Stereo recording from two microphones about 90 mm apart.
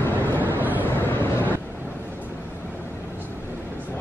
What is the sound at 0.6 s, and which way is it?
Vehicle, 20° right (ahead or behind).